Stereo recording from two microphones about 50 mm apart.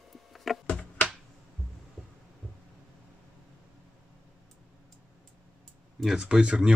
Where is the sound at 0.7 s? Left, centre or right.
Left.